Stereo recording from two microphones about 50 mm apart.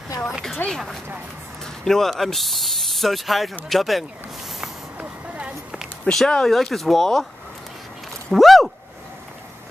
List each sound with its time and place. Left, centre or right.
0.3 s speech: centre
4.9 s a sound: right
6.1 s speech: centre
8.3 s speech: centre